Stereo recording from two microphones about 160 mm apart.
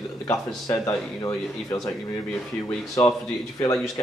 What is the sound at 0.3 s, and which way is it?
A man's voice, 20° left (ahead or behind).